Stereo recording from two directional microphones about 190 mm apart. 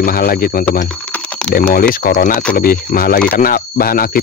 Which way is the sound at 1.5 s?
50° left (ahead or behind).